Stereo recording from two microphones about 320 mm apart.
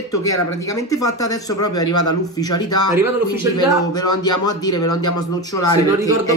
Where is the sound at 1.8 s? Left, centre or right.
Left.